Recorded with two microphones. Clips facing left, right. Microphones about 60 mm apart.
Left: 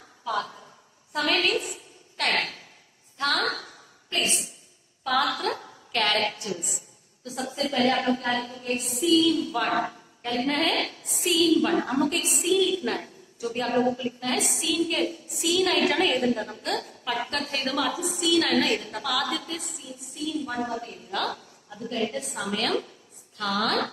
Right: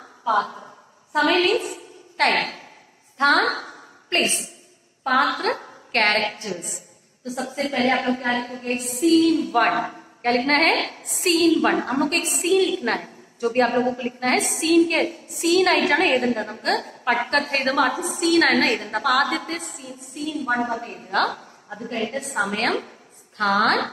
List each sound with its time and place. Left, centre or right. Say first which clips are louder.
0.2 s a woman's voice: right 8 dB; right
3.2 s a woman's voice: right 8 dB; right